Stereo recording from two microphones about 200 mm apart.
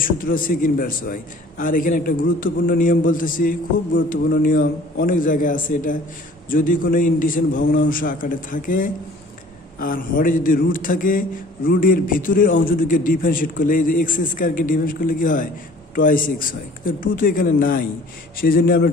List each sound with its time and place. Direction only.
0.0 s a man's voice: 45° left (ahead or behind)